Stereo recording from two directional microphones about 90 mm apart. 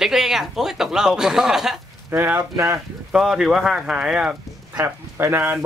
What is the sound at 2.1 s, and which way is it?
Speech, 25° right (ahead or behind).